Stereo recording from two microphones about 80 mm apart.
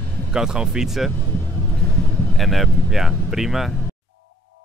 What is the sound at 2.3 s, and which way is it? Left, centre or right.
Speech, centre.